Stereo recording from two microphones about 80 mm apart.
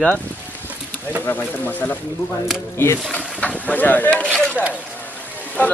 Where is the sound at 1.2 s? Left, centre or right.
Left.